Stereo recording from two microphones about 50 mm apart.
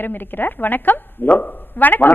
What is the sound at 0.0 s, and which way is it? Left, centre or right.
A woman's voice, left.